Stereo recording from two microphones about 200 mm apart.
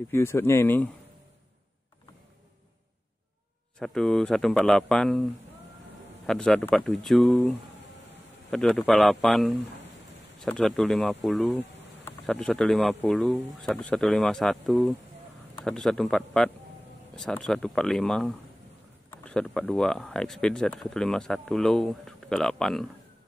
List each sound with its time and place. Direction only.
0.1 s speech: 15° left (ahead or behind)
3.8 s speech: centre (ahead or behind)